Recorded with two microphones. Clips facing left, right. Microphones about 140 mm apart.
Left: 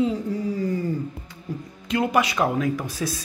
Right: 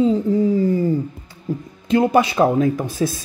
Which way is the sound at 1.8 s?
25° right (ahead or behind).